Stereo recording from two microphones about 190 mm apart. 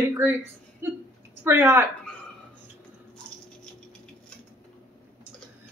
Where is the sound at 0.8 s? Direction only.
15° right (ahead or behind).